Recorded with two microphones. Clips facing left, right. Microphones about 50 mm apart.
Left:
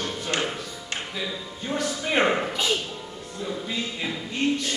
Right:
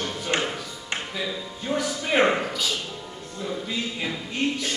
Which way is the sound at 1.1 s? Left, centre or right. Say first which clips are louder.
Right 1 dB; centre.